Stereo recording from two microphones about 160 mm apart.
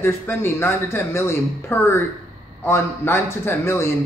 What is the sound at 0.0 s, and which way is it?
A man's voice, 15° left (ahead or behind).